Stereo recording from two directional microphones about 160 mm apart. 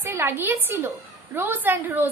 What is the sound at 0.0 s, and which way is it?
A woman's voice, 15° right (ahead or behind).